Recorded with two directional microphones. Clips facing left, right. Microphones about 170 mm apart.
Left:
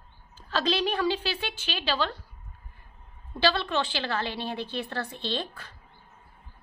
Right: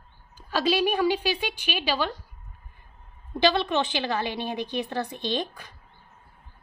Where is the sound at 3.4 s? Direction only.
20° right (ahead or behind).